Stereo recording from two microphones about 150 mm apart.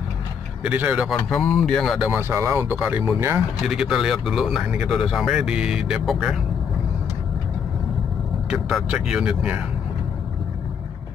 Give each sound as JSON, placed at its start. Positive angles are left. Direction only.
{"t": 0.7, "sound": "speech", "side_deg": -10}
{"t": 1.3, "sound": "speech", "side_deg": 0}
{"t": 2.0, "sound": "speech", "side_deg": -15}
{"t": 3.6, "sound": "speech", "side_deg": -5}
{"t": 8.5, "sound": "speech", "side_deg": 0}